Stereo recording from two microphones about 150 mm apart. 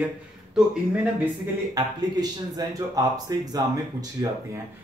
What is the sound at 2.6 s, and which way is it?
Speech, 25° right (ahead or behind).